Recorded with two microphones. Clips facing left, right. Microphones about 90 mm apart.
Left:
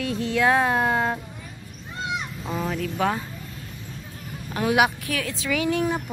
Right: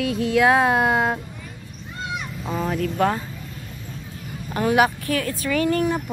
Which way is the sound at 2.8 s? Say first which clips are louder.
Right 4 dB; centre (ahead or behind).